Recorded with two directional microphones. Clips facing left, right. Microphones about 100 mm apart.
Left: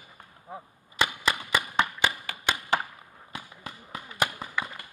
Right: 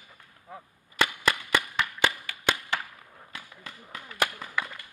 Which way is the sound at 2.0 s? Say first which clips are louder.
Even; 15° left (ahead or behind).